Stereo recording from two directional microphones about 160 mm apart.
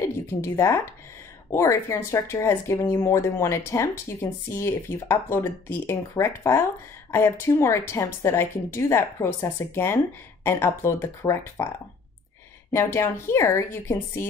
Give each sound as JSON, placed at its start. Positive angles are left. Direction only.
{"t": 0.3, "sound": "speech", "side_deg": 15}
{"t": 12.7, "sound": "speech", "side_deg": 15}